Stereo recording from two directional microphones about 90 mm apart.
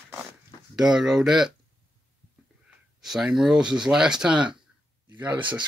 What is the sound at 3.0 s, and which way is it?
Speech, 5° right (ahead or behind).